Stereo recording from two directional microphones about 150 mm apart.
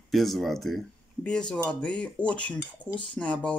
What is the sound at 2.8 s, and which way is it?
Cutlery, 30° left (ahead or behind).